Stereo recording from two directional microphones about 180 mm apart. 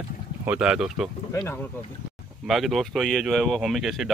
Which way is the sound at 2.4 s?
Centre (ahead or behind).